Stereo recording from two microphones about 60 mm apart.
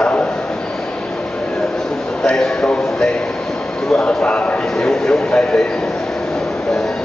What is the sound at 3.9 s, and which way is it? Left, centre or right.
A man's voice, centre.